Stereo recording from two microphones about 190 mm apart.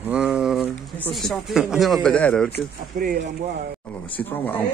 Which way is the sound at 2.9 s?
50° right (ahead or behind).